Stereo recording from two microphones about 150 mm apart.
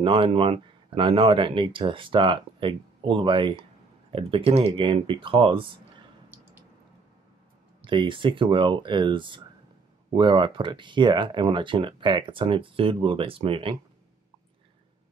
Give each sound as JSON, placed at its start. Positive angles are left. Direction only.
{"t": 0.0, "sound": "speech", "side_deg": -35}
{"t": 7.8, "sound": "speech", "side_deg": -35}